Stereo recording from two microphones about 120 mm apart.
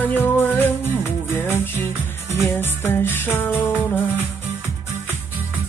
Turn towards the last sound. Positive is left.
turn(degrees=15)  # may be behind; listen again after turning